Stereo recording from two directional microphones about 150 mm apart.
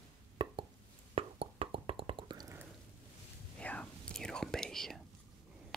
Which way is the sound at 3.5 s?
10° left (ahead or behind).